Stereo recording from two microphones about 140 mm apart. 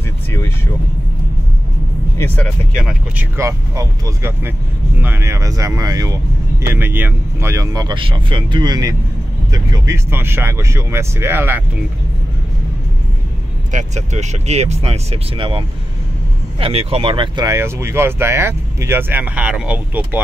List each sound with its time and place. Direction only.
2.1 s speech: 15° left (ahead or behind)
3.3 s speech: 20° right (ahead or behind)
6.6 s speech: 15° right (ahead or behind)
13.7 s speech: 55° right (ahead or behind); by 17.5 s 35° right (ahead or behind)
17.5 s speech: 20° right (ahead or behind)